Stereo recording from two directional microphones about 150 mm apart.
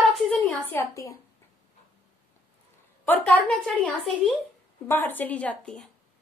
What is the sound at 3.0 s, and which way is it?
A woman's voice, 10° left (ahead or behind).